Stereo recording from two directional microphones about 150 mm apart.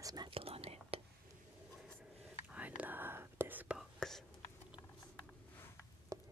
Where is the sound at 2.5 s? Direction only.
10° right (ahead or behind).